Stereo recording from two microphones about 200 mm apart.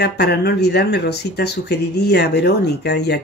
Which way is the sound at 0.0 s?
55° left (ahead or behind).